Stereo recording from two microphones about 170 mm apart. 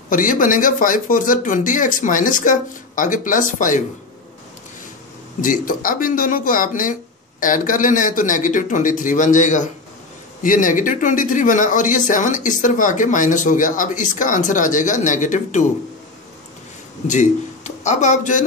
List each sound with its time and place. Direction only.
0.1 s speech: 50° left (ahead or behind)
5.4 s speech: 55° left (ahead or behind)
17.1 s a man's voice: 45° left (ahead or behind)